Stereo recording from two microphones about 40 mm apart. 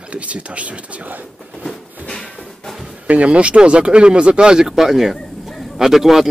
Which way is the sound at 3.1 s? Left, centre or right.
Right.